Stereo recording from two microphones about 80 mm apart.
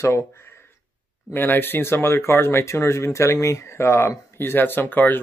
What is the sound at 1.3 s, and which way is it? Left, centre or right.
Speech, left.